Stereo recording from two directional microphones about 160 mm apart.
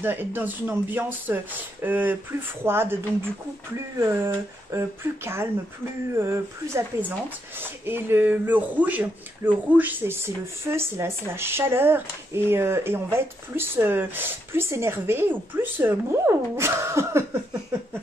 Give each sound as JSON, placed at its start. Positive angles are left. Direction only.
{"t": 0.0, "sound": "speech", "side_deg": -10}